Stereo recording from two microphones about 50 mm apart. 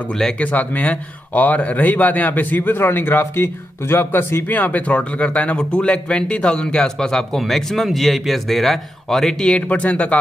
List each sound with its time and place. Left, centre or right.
0.4 s speech: left
4.5 s speech: left; by 9.6 s centre
9.7 s speech: left